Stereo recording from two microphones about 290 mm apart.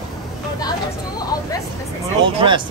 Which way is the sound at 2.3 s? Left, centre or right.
Centre.